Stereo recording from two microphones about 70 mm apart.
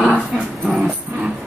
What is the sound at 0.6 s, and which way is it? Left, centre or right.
Music, centre.